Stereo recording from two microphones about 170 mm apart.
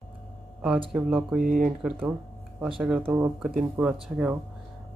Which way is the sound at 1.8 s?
5° right (ahead or behind).